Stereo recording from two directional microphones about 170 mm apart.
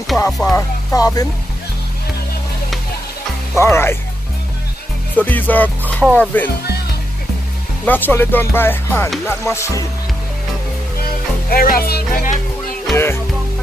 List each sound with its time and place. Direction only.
0.3 s music: 5° left (ahead or behind)
0.6 s music: 20° left (ahead or behind)
3.5 s speech: 15° left (ahead or behind)
5.2 s speech: 10° left (ahead or behind)
7.8 s speech: 10° left (ahead or behind)
11.5 s speech: 60° left (ahead or behind)
12.9 s speech: 15° left (ahead or behind)